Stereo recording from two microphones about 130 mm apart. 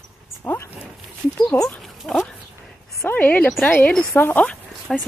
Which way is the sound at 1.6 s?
5° left (ahead or behind).